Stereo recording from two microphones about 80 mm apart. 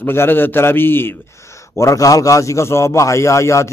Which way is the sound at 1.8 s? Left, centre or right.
Left.